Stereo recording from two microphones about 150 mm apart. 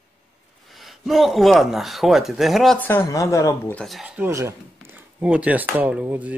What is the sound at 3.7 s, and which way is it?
Speech, centre (ahead or behind).